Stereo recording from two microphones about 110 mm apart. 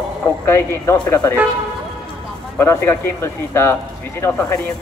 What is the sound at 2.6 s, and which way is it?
Speech, 20° left (ahead or behind).